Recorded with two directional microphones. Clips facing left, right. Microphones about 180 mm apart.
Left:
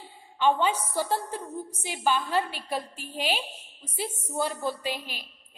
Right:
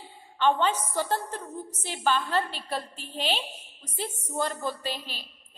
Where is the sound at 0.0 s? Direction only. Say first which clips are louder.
Even; 10° left (ahead or behind).